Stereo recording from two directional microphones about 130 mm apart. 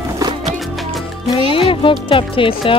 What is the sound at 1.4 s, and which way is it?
Music, 40° left (ahead or behind).